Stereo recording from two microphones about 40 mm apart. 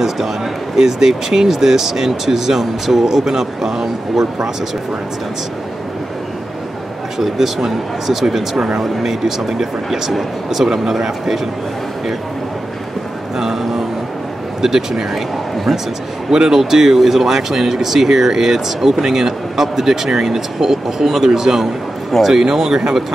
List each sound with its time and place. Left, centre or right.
0.7 s speech: centre
7.2 s speech: centre
13.4 s speech: centre
15.5 s a sound: centre
16.3 s speech: centre